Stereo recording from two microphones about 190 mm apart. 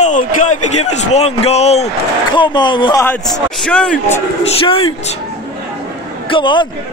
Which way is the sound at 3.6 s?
5° left (ahead or behind).